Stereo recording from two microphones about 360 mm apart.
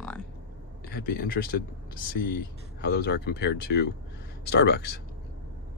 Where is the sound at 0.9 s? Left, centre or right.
Left.